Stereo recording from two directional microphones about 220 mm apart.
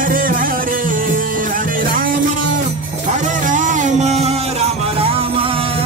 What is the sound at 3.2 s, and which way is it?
Music, 35° right (ahead or behind).